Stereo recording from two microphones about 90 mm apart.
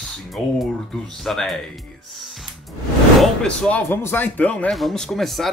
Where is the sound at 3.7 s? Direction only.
20° left (ahead or behind).